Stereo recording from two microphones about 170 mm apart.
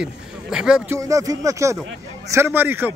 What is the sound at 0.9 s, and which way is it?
A man's voice, 20° right (ahead or behind).